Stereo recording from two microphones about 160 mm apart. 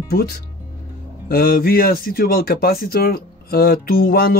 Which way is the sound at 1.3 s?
65° left (ahead or behind).